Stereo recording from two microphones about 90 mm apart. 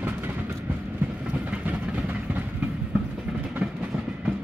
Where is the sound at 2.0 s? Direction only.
15° right (ahead or behind).